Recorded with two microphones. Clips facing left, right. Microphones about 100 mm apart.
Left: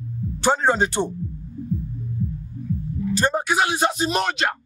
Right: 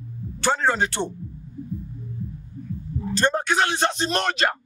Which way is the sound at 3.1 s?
10° left (ahead or behind).